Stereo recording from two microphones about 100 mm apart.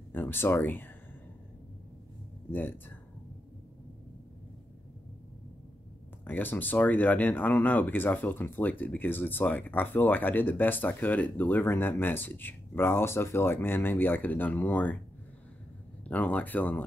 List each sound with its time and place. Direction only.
0.1 s speech: 20° left (ahead or behind)
6.2 s speech: 20° left (ahead or behind)
16.1 s speech: 15° left (ahead or behind)